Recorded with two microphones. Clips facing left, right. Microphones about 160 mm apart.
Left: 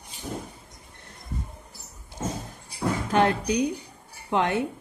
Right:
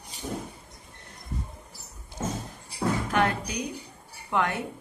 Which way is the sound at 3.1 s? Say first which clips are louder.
Left 4 dB; 25° left (ahead or behind).